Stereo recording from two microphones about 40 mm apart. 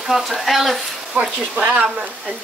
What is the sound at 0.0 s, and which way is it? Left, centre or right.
Speech, centre.